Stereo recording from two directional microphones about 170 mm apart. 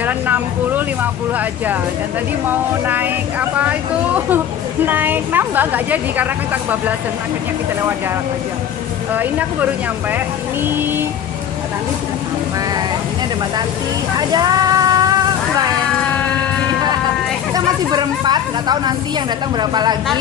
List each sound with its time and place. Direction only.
0.0 s a woman's voice: 10° right (ahead or behind)
2.9 s a woman's voice: 10° right (ahead or behind)
9.1 s a woman's voice: 10° right (ahead or behind)
14.1 s a sound: 25° right (ahead or behind)
17.6 s speech: 25° right (ahead or behind)